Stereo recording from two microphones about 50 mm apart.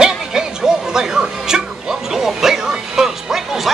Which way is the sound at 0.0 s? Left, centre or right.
Centre.